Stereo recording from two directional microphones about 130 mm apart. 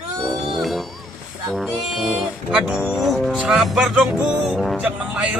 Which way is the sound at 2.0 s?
5° right (ahead or behind).